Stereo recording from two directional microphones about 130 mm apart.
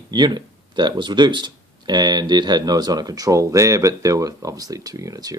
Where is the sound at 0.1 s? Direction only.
35° right (ahead or behind).